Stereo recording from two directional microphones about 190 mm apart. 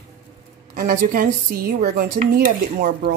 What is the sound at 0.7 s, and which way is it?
Speech, 45° right (ahead or behind).